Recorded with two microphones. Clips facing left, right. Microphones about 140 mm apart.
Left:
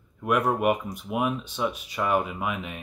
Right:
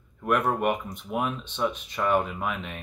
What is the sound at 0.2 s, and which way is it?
Speech, 10° left (ahead or behind).